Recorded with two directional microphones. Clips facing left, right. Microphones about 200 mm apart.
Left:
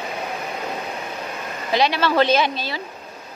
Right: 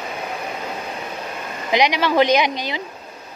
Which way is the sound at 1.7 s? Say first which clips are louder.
Right 1 dB; 15° right (ahead or behind).